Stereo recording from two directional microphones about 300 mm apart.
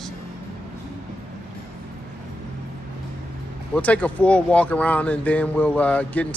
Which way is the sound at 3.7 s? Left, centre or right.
Centre.